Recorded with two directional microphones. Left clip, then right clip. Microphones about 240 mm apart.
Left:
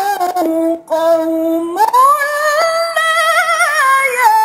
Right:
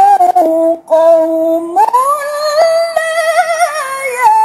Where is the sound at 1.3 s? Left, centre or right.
Centre.